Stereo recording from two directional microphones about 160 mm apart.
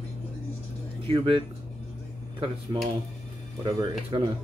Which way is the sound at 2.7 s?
30° right (ahead or behind).